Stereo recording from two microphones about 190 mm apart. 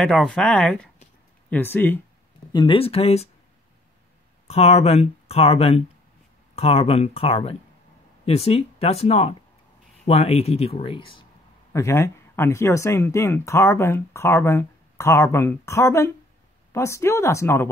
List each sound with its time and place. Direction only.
0.0 s speech: centre (ahead or behind)
2.5 s speech: 25° left (ahead or behind)
4.5 s speech: 30° left (ahead or behind)
11.7 s speech: 15° left (ahead or behind)